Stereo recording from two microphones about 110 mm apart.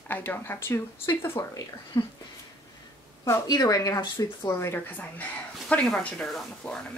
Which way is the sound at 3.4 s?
35° left (ahead or behind).